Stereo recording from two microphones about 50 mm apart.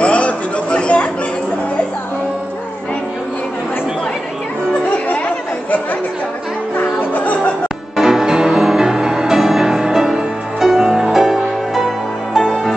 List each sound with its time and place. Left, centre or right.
0.0 s music: left
4.8 s chatter: left
6.8 s music: left
7.9 s music: centre